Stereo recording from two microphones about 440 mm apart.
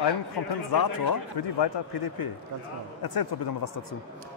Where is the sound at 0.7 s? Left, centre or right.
Left.